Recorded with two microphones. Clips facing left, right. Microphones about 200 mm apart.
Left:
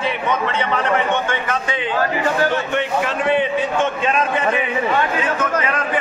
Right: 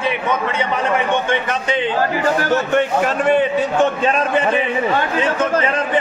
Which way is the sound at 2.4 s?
45° right (ahead or behind).